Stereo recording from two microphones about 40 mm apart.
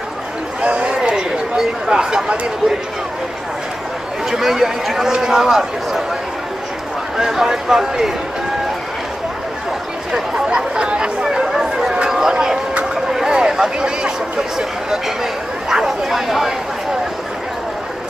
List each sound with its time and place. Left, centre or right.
0.6 s a sound: right
4.3 s a man's voice: centre
7.2 s a man's voice: centre
10.1 s speech: centre
11.4 s a sound: centre
13.3 s a man's voice: centre